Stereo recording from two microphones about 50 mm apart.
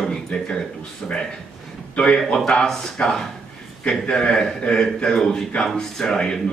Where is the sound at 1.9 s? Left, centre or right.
Left.